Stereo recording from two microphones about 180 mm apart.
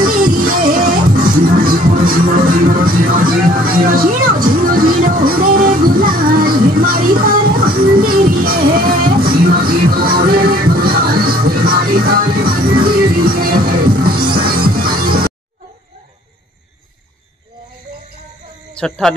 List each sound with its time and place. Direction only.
0.0 s music: 50° right (ahead or behind)
18.7 s speech: 5° left (ahead or behind)